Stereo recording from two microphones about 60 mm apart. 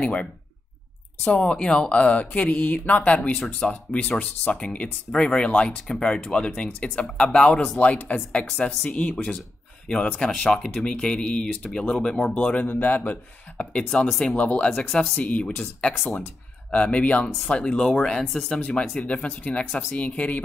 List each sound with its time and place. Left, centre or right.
0.0 s speech: centre
4.6 s speech: centre
7.8 s speech: left
8.4 s speech: centre
8.8 s speech: left
13.8 s speech: centre
14.3 s speech: left
16.7 s speech: left; by 18.5 s centre
18.5 s speech: centre